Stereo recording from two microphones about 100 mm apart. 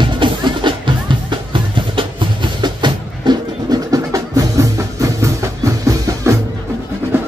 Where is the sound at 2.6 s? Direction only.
50° right (ahead or behind).